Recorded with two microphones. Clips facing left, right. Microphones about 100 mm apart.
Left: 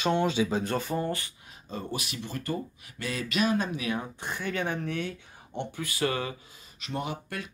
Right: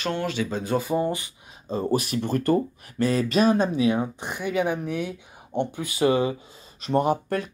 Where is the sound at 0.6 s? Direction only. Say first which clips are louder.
Right 5 dB; 5° right (ahead or behind).